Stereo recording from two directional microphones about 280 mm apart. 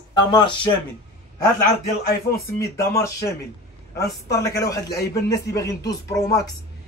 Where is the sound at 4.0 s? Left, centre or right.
Centre.